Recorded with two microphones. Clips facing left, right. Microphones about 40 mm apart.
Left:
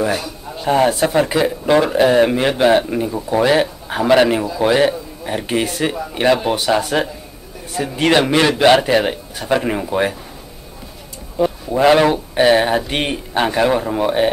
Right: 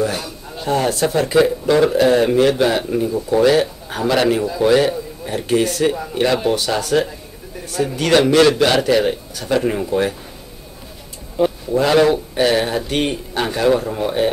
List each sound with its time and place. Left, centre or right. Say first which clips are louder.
0.7 s speech: left 3 dB; left
11.7 s speech: left 2 dB; left